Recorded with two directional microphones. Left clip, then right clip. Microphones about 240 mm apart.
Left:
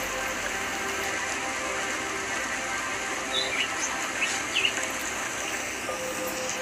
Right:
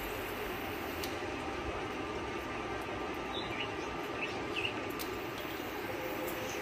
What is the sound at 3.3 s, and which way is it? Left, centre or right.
Bird, left.